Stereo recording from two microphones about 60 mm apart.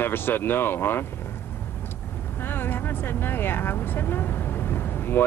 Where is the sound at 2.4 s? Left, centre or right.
Left.